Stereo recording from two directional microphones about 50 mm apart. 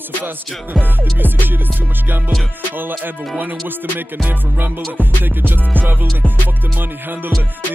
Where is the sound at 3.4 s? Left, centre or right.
Right.